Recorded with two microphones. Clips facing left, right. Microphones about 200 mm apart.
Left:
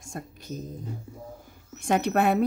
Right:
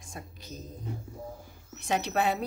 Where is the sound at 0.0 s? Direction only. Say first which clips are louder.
Left 6 dB; 50° left (ahead or behind).